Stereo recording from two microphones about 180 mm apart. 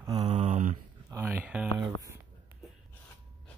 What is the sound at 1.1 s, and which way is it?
Speech, 10° right (ahead or behind).